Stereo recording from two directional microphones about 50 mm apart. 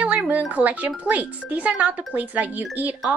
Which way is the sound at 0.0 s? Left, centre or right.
Right.